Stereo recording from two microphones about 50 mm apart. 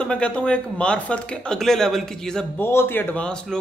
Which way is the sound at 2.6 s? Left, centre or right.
Left.